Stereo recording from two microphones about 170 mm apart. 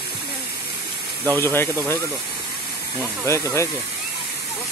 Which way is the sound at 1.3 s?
15° left (ahead or behind).